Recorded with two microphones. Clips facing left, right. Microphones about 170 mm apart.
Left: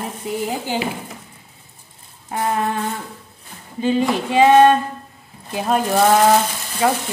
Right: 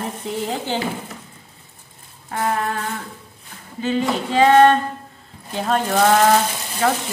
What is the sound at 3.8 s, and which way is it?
Speech, 15° left (ahead or behind).